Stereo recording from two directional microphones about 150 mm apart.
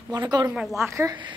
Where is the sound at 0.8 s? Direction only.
20° right (ahead or behind).